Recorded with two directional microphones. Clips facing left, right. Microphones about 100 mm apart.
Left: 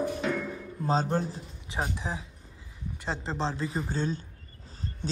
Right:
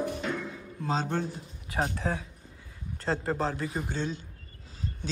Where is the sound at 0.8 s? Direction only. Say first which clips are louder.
Left 3 dB; 35° left (ahead or behind).